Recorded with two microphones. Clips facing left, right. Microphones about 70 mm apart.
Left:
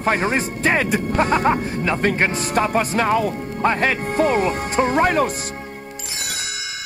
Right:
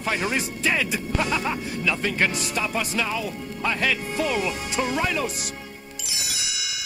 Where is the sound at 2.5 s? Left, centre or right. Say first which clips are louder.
Left 8 dB; left.